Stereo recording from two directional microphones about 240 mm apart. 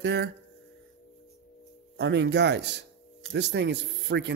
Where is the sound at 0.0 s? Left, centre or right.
Right.